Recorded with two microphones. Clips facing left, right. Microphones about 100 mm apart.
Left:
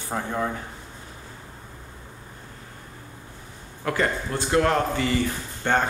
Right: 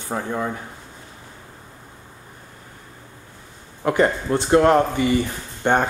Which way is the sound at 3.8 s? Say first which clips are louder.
Right 6 dB; 25° right (ahead or behind).